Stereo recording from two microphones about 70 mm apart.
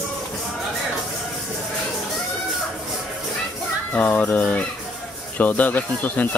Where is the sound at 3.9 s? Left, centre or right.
Centre.